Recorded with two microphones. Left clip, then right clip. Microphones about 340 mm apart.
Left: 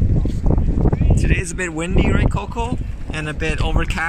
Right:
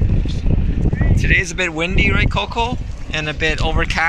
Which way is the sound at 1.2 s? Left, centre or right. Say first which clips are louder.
Right 11 dB; centre.